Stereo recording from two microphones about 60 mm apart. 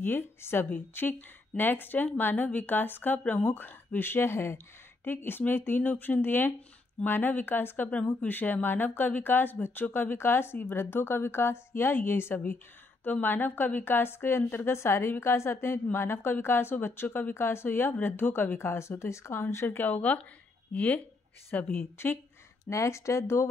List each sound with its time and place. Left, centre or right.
0.0 s a woman's voice: left
19.8 s speech: left
21.7 s a woman's voice: left
22.7 s speech: left